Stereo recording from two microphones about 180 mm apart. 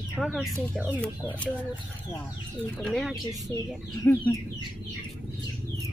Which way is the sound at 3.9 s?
15° left (ahead or behind).